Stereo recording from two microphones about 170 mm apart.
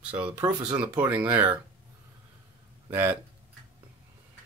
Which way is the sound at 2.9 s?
10° right (ahead or behind).